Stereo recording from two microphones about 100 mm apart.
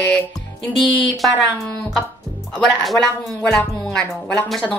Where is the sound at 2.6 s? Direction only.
5° left (ahead or behind).